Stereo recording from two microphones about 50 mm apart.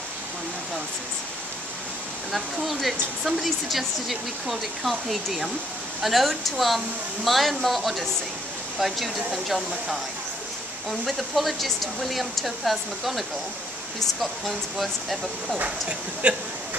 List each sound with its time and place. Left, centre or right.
2.3 s speech: centre
14.4 s speech: centre
15.6 s speech: right